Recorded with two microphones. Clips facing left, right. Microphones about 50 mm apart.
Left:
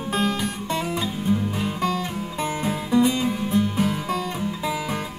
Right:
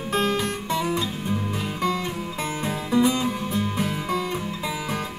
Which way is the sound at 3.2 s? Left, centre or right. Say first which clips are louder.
Left 3 dB; centre.